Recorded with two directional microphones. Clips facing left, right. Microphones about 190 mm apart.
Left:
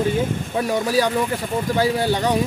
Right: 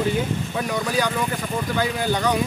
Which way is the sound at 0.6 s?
30° left (ahead or behind).